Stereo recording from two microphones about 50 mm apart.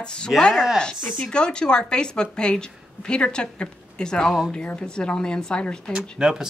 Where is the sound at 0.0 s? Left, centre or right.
Centre.